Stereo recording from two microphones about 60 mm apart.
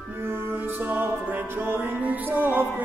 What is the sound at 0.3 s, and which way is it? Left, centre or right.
Music, right.